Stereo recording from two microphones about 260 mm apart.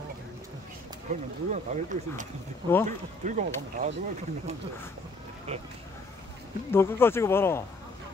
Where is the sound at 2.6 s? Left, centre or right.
Centre.